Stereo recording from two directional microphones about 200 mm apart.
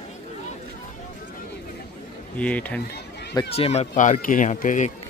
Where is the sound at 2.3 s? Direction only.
5° left (ahead or behind).